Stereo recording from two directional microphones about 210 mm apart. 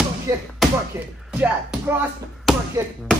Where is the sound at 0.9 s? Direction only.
10° right (ahead or behind).